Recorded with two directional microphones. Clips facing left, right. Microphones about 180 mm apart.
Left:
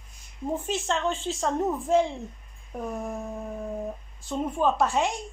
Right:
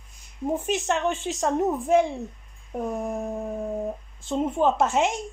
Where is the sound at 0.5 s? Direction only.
15° right (ahead or behind).